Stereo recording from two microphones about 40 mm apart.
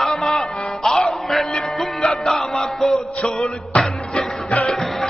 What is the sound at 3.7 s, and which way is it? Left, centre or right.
Music, left.